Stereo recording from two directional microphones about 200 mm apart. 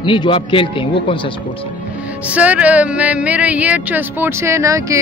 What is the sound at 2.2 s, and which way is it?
Speech, 5° right (ahead or behind).